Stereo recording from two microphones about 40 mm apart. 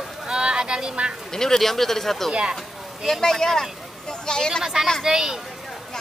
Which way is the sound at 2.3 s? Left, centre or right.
Right.